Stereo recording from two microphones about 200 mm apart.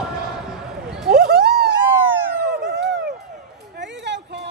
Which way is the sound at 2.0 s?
10° right (ahead or behind).